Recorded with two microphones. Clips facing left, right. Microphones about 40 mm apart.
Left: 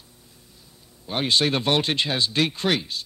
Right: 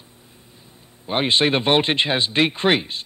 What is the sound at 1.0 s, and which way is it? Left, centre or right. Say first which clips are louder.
Speech: right 3 dB; right.